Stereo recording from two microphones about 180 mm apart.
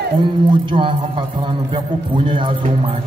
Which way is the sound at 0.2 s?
25° right (ahead or behind).